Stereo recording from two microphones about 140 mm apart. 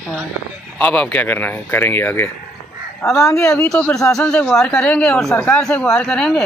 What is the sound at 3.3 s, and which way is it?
Speech, 5° left (ahead or behind).